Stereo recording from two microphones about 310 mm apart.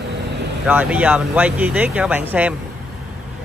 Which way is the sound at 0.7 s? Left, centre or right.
Centre.